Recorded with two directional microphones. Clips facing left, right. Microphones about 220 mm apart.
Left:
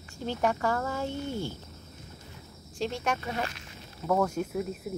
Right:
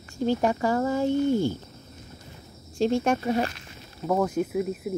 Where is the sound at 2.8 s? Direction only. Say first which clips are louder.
Right 8 dB; 45° right (ahead or behind).